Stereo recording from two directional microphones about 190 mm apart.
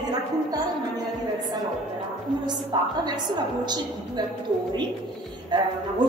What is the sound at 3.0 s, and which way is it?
A woman's voice, 20° right (ahead or behind).